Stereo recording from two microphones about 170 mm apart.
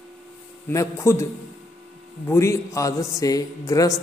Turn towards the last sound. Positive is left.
turn(degrees=20)  # may be behind; listen again after turning